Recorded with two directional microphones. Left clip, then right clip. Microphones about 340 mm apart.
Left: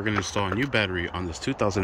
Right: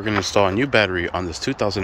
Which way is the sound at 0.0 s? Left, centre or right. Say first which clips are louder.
Right 8 dB; centre.